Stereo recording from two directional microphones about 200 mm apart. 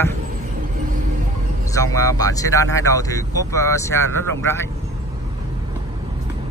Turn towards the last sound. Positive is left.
turn(degrees=10)  # may be behind; listen again after turning